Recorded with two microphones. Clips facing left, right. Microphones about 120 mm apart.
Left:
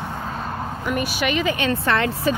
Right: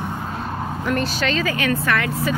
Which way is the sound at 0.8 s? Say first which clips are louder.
Right 1 dB; 10° left (ahead or behind).